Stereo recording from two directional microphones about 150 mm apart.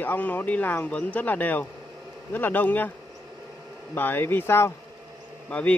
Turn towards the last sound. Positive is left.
turn(degrees=10)  # may be behind; listen again after turning